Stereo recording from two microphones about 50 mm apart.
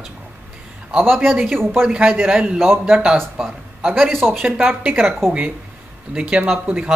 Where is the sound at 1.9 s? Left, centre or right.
Centre.